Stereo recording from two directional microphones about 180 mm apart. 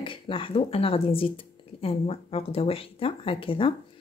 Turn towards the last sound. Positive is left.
turn(degrees=30)  # may be behind; listen again after turning